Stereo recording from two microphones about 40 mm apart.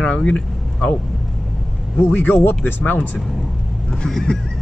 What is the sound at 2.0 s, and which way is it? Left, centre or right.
Speech, left.